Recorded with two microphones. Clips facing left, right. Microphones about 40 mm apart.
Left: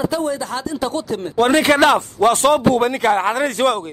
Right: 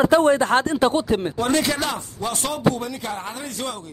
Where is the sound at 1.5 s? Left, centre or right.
Left.